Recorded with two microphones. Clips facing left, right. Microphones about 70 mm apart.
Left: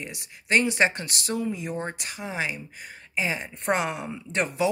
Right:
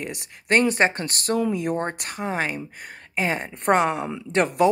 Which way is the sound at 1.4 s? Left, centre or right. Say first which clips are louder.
Right 7 dB; right.